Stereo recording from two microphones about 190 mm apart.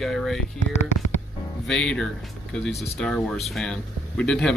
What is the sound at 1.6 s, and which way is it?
Speech, 5° left (ahead or behind).